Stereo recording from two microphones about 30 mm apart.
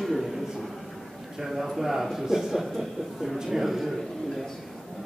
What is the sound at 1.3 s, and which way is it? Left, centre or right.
Speech, centre.